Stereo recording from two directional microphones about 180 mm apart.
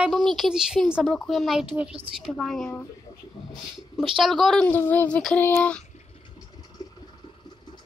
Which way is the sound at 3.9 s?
5° right (ahead or behind).